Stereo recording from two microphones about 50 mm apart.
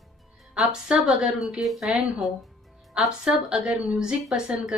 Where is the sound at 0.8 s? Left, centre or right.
Right.